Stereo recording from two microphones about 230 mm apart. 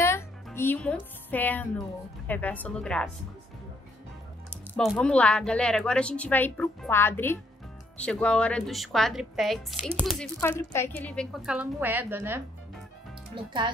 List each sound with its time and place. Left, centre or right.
0.5 s speech: centre
4.7 s a woman's voice: centre
13.3 s speech: right